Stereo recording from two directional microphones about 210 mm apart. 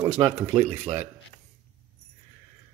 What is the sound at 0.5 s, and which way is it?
Speech, 30° right (ahead or behind).